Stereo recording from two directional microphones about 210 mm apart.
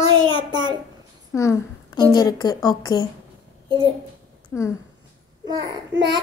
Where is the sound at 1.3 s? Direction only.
15° left (ahead or behind).